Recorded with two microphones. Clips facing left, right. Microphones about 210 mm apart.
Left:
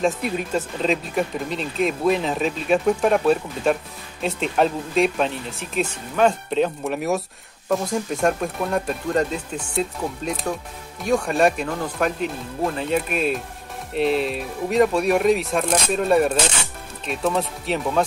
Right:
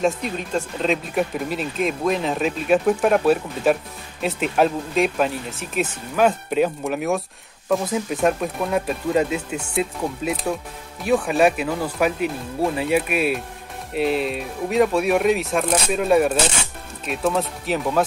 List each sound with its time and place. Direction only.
0.0 s speech: 5° left (ahead or behind)